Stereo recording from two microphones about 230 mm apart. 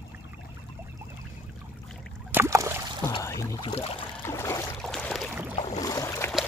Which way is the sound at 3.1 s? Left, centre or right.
Centre.